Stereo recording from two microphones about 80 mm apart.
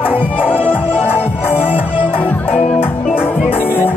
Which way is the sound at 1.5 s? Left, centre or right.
Centre.